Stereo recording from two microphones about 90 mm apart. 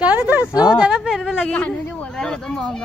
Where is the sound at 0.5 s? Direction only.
50° left (ahead or behind).